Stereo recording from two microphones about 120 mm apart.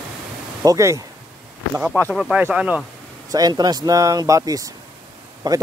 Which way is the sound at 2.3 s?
10° right (ahead or behind).